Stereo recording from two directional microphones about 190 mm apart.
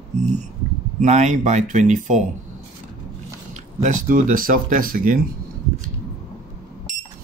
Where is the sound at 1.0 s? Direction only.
40° right (ahead or behind).